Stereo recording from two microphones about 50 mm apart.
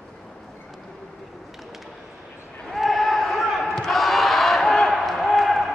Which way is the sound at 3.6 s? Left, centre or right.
Centre.